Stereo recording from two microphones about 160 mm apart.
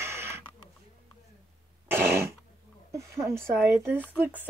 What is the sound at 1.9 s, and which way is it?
A woman's voice, 15° right (ahead or behind).